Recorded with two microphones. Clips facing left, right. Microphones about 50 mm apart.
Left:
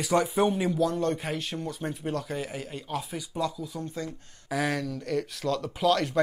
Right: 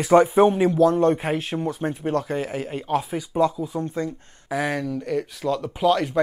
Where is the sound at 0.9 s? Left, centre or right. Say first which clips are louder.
Right 8 dB; right.